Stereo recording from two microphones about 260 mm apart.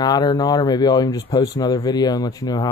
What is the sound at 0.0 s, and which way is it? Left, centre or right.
Speech, centre.